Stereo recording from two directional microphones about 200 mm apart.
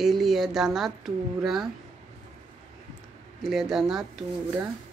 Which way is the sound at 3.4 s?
Centre (ahead or behind).